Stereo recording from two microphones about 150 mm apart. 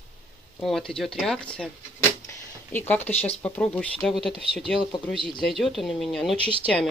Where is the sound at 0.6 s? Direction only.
5° left (ahead or behind).